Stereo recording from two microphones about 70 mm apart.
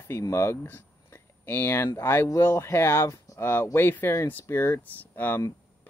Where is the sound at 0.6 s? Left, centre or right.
Left.